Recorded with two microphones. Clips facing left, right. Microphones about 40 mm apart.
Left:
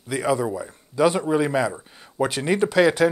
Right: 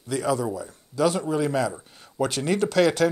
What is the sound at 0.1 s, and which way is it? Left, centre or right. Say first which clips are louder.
A man's voice: left 2 dB; centre.